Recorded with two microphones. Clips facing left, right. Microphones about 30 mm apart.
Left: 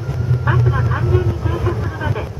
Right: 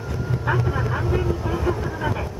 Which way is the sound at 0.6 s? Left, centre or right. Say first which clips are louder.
Left 4 dB; centre.